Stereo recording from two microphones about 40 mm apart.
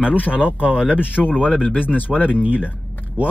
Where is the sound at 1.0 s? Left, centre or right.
Left.